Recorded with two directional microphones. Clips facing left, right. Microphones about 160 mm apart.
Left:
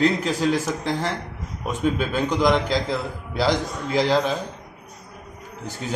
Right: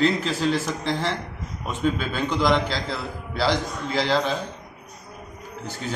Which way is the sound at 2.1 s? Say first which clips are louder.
Left 2 dB; 15° left (ahead or behind).